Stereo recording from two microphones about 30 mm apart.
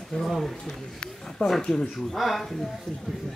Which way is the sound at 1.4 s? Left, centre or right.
Left.